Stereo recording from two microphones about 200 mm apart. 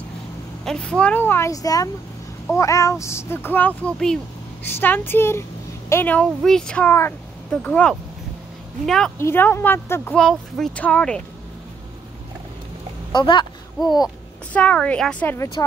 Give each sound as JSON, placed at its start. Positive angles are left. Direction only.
{"t": 0.7, "sound": "speech", "side_deg": 5}
{"t": 13.1, "sound": "speech", "side_deg": 25}
{"t": 14.0, "sound": "speech", "side_deg": 5}